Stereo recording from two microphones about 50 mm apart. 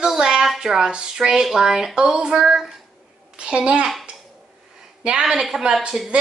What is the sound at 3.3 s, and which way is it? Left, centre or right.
Speech, right.